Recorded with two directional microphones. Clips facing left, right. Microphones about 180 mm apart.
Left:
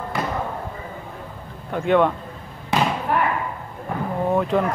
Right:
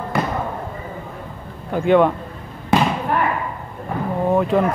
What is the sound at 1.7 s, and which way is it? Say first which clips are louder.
Speech: right 3 dB; centre (ahead or behind).